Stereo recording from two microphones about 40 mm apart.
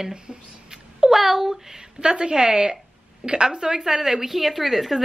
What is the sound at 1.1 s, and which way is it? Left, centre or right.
Speech, centre.